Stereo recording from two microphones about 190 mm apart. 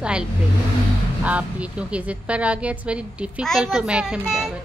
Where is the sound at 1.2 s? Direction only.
5° right (ahead or behind).